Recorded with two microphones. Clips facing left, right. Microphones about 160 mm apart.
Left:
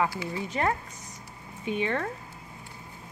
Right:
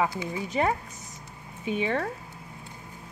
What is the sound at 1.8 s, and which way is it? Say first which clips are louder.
Speech: right 1 dB; 10° right (ahead or behind).